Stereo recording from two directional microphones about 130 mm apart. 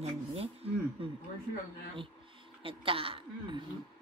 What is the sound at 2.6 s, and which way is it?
A woman's voice, 45° right (ahead or behind).